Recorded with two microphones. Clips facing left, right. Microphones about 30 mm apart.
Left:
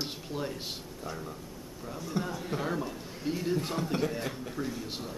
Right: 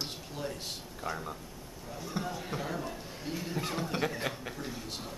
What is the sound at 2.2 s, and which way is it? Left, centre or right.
Speech, centre.